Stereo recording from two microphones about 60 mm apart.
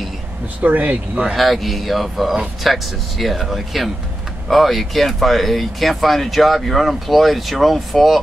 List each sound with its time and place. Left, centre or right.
0.6 s speech: right
1.3 s speech: centre